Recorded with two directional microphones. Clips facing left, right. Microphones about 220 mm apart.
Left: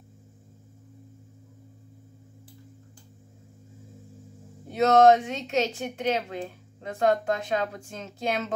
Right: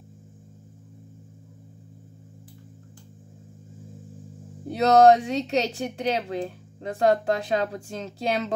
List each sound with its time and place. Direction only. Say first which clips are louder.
4.6 s speech: right 2 dB; 35° right (ahead or behind)